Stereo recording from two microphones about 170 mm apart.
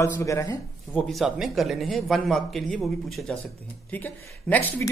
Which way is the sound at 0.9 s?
Centre (ahead or behind).